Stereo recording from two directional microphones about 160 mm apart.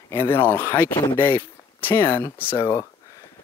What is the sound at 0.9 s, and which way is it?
Speech, 30° left (ahead or behind).